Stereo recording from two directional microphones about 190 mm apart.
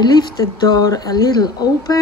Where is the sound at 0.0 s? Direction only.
20° left (ahead or behind).